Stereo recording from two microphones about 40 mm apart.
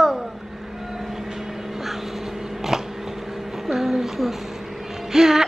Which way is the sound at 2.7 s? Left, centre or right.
Centre.